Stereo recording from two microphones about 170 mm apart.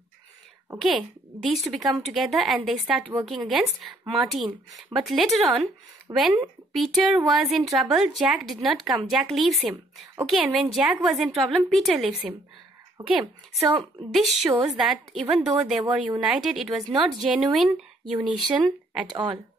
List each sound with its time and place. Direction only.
0.7 s a woman's voice: centre (ahead or behind)
12.9 s speech: 15° right (ahead or behind)
14.7 s a woman's voice: 5° right (ahead or behind)
19.0 s speech: 25° right (ahead or behind)